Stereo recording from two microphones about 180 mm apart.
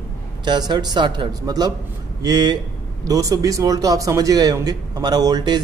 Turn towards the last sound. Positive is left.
turn(degrees=-25)  # may be behind; listen again after turning